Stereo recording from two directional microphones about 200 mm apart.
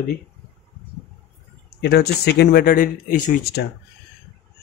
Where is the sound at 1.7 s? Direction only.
55° left (ahead or behind).